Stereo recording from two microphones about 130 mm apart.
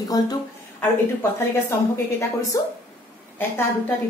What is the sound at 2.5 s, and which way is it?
Speech, 25° left (ahead or behind).